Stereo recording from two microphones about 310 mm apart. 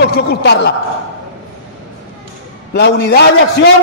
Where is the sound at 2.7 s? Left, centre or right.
Left.